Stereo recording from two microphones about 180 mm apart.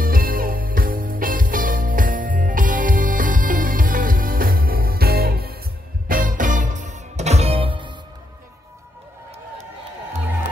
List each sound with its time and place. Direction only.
0.0 s music: 50° right (ahead or behind); by 7.9 s 30° right (ahead or behind)